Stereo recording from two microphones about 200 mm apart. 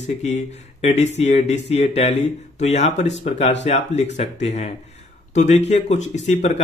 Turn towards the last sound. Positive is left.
turn(degrees=35)  # may be behind; listen again after turning